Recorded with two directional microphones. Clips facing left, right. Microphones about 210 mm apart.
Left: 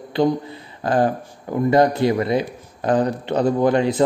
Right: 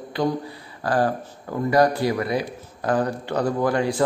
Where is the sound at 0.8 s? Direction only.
20° left (ahead or behind).